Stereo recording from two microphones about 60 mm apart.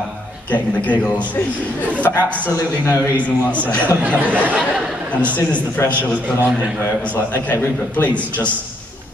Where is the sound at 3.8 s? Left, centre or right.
Right.